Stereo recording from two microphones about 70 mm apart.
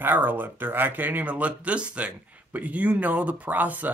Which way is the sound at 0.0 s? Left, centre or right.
Right.